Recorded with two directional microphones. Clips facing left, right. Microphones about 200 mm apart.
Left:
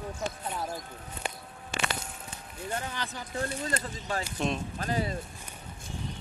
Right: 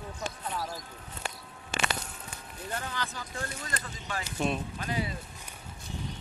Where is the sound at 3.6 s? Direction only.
35° left (ahead or behind).